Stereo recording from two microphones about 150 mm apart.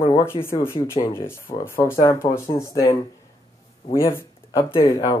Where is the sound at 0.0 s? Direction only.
20° left (ahead or behind).